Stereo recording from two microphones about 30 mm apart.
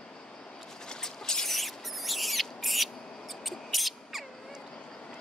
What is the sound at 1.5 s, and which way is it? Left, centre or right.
Rodents, centre.